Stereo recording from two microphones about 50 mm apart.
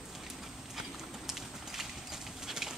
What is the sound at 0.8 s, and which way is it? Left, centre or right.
Clip-clop, centre.